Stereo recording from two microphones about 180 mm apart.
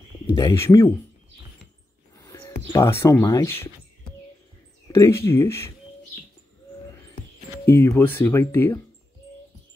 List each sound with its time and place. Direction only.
0.3 s speech: 20° left (ahead or behind)
2.2 s speech: 15° left (ahead or behind)
4.9 s speech: 15° left (ahead or behind)
7.6 s speech: 10° left (ahead or behind)